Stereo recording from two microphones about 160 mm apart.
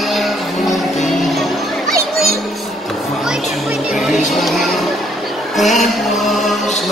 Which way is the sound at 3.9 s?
Centre (ahead or behind).